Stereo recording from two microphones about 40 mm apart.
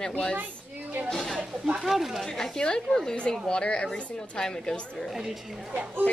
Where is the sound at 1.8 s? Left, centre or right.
Centre.